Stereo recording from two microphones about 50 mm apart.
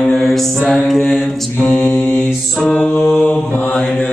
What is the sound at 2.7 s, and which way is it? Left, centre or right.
Mantra, centre.